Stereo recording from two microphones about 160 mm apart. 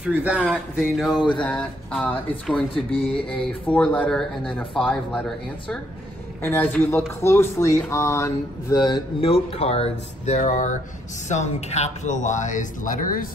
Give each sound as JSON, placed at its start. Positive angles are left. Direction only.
{"t": 0.0, "sound": "speech", "side_deg": -5}